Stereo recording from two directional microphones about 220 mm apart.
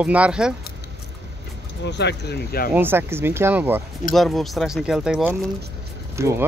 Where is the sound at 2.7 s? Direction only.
10° right (ahead or behind).